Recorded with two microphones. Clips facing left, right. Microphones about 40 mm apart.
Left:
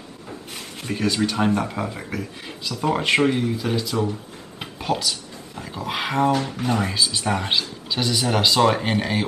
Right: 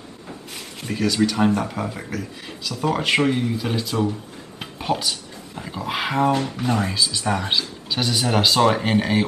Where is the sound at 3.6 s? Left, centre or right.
Centre.